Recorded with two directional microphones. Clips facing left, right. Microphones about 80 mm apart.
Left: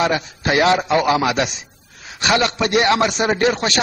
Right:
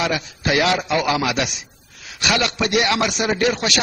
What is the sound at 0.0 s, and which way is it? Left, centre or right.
A man's voice, left.